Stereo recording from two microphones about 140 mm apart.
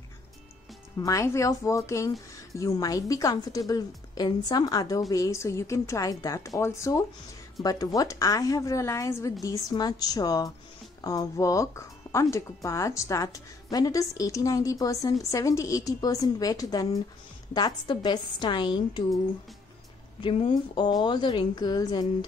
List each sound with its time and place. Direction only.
0.9 s a woman's voice: 25° left (ahead or behind)
20.2 s a woman's voice: 40° left (ahead or behind)